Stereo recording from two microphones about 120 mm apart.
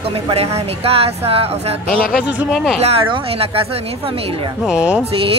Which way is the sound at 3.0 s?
50° right (ahead or behind).